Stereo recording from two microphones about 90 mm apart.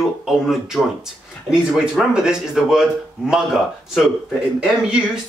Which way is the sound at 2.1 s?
5° right (ahead or behind).